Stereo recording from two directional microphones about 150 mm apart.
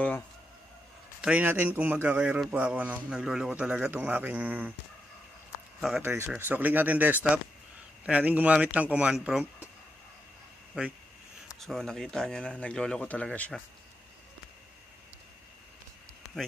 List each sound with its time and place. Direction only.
1.2 s speech: 10° right (ahead or behind)
5.8 s speech: centre (ahead or behind)
6.0 s speech: 15° right (ahead or behind)
10.8 s speech: 10° right (ahead or behind); by 13.6 s 10° left (ahead or behind)